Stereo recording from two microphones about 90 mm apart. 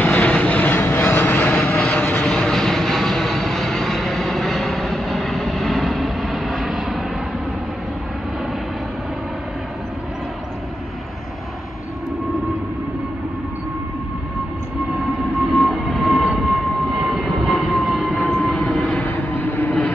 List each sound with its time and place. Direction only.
0.0 s vehicle: 15° left (ahead or behind); by 7.1 s 5° right (ahead or behind)
15.5 s vehicle: centre (ahead or behind)
18.9 s vehicle: 20° left (ahead or behind)